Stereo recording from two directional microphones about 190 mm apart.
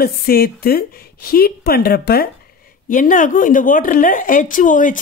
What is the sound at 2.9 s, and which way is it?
A woman's voice, 45° left (ahead or behind).